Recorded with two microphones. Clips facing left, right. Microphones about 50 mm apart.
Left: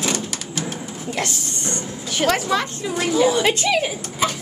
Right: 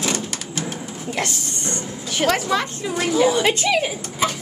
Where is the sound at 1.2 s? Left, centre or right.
Right.